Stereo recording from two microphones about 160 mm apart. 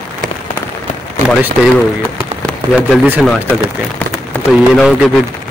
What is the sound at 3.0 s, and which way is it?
Speech, 5° right (ahead or behind).